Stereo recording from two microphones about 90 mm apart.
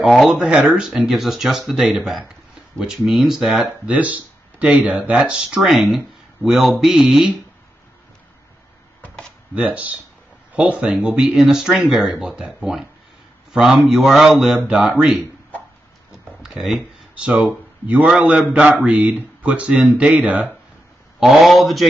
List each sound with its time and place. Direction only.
0.0 s speech: centre (ahead or behind)
3.8 s speech: 15° right (ahead or behind)
9.6 s speech: 15° right (ahead or behind)
16.4 s speech: centre (ahead or behind)
17.1 s speech: 15° right (ahead or behind)
21.2 s speech: centre (ahead or behind)